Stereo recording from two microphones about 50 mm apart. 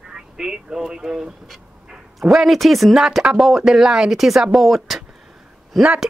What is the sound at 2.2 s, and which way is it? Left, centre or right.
Speech, centre.